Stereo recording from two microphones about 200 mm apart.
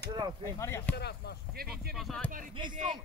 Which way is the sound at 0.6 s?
15° left (ahead or behind).